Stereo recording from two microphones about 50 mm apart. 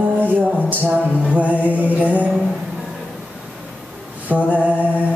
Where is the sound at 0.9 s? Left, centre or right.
Right.